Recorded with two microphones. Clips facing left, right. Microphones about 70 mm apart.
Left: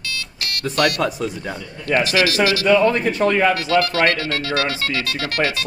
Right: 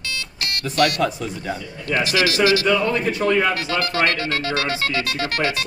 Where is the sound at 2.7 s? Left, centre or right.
Left.